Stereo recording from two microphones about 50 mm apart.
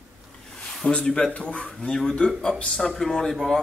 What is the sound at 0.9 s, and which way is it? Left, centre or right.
Speech, centre.